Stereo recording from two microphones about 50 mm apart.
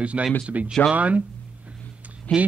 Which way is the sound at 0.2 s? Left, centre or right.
Right.